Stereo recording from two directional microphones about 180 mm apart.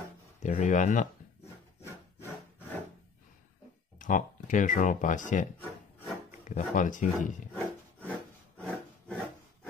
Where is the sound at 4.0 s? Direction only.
45° left (ahead or behind).